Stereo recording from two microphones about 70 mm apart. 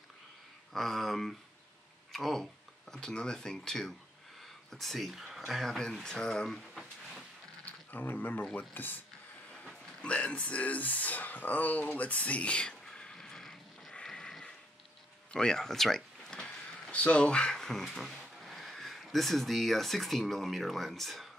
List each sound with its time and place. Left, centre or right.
0.7 s speech: centre
6.0 s a sound: centre
7.9 s speech: left
10.0 s speech: centre
13.9 s a sound: centre
15.3 s speech: centre